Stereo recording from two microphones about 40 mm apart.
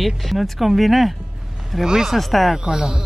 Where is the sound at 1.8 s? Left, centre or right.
Centre.